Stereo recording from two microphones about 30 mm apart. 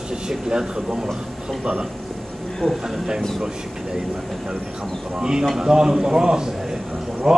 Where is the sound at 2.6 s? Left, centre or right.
Left.